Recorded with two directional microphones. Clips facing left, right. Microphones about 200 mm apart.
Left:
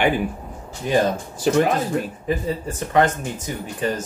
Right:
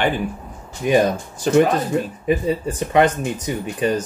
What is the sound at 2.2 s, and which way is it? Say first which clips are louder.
Speech: right 4 dB; 20° right (ahead or behind).